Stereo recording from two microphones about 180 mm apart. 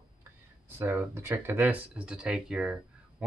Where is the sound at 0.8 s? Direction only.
15° right (ahead or behind).